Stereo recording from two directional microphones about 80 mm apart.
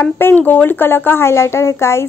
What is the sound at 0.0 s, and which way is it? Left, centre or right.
A woman's voice, left.